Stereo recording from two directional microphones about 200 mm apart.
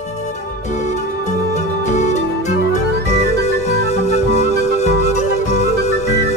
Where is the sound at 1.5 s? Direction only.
35° left (ahead or behind).